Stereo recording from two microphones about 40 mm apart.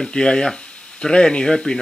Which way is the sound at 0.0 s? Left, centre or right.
Centre.